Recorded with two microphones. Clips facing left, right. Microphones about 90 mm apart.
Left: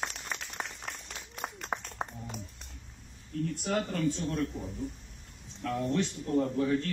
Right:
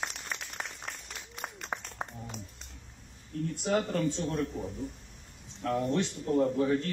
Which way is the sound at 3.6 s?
20° right (ahead or behind).